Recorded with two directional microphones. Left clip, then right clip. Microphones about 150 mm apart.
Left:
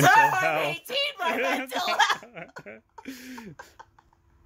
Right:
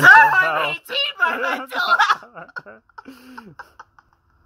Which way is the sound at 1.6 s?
10° left (ahead or behind).